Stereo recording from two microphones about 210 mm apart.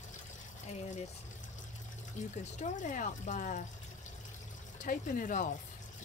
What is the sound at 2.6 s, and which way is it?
Speech, 35° left (ahead or behind).